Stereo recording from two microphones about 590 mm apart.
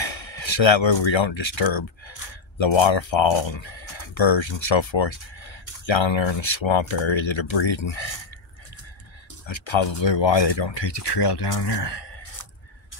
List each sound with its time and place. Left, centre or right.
0.0 s speech: left
9.5 s speech: left